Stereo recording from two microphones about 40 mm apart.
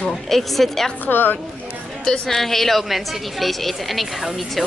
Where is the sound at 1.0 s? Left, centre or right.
Left.